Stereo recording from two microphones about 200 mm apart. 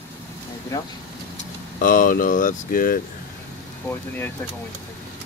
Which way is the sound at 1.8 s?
40° left (ahead or behind).